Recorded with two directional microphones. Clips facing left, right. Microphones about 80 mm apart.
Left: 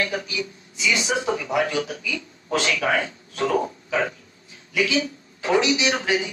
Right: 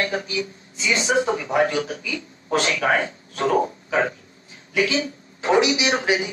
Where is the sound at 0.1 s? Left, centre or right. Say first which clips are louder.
Right 2 dB; right.